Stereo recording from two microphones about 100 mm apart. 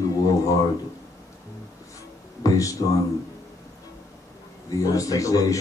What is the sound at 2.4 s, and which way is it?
Music, 35° left (ahead or behind).